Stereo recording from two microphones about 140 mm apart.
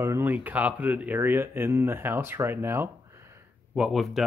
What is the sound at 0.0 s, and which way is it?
Speech, 15° right (ahead or behind).